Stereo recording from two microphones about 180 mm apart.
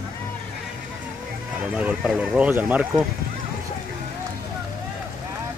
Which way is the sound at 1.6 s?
5° right (ahead or behind).